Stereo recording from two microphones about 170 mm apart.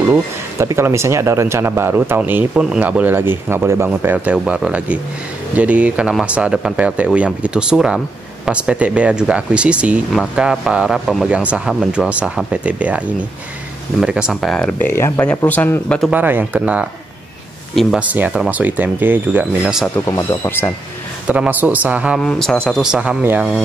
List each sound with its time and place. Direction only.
0.1 s speech: 15° right (ahead or behind)
14.0 s speech: 5° right (ahead or behind); by 16.0 s 10° left (ahead or behind)
16.0 s speech: 10° right (ahead or behind)
20.1 s speech: 20° left (ahead or behind)
21.3 s speech: 10° right (ahead or behind)
22.2 s speech: 5° left (ahead or behind)